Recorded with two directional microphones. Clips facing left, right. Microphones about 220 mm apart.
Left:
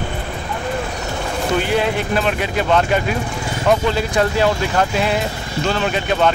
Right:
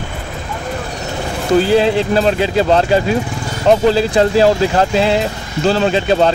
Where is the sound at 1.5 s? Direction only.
30° right (ahead or behind).